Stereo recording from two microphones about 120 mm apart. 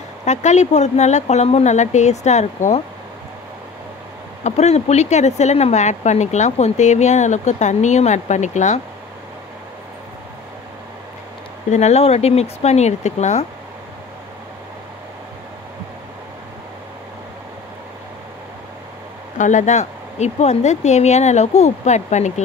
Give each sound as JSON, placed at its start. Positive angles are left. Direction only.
{"t": 0.2, "sound": "speech", "side_deg": 75}
{"t": 4.4, "sound": "speech", "side_deg": 70}
{"t": 11.7, "sound": "speech", "side_deg": 70}
{"t": 19.3, "sound": "speech", "side_deg": 90}